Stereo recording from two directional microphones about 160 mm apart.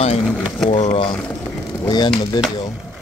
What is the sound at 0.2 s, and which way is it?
Speech, 5° right (ahead or behind).